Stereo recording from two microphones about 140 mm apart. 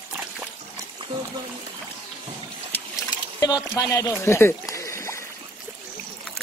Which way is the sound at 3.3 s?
25° left (ahead or behind).